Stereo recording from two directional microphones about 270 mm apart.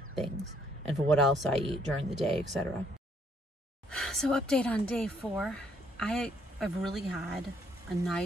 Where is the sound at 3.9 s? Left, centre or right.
Centre.